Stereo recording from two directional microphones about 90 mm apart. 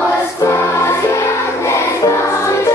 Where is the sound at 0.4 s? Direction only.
35° left (ahead or behind).